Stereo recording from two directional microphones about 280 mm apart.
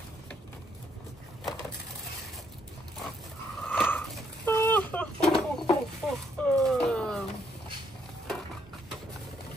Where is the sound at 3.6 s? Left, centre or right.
Centre.